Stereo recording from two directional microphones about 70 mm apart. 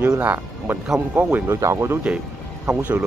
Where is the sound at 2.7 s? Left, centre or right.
Right.